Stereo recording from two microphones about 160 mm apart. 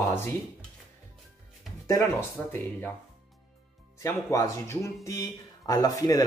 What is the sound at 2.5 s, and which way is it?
Speech, 10° left (ahead or behind).